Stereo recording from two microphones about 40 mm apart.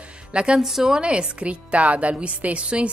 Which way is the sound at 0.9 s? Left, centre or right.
Right.